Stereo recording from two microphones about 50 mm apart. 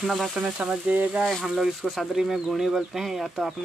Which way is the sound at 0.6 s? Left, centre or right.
Right.